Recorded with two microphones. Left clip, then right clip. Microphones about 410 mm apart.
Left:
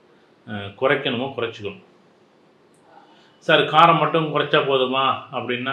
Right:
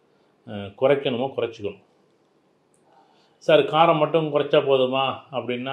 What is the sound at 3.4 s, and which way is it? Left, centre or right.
Speech, right.